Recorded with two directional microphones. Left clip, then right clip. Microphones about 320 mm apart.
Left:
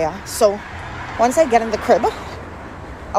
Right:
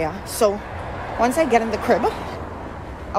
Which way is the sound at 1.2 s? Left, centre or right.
Centre.